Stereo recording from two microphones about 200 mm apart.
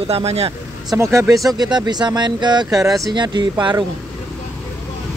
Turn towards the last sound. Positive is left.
turn(degrees=-20)  # may be behind; listen again after turning